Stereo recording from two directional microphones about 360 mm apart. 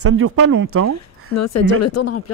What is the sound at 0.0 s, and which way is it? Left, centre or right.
Speech, right.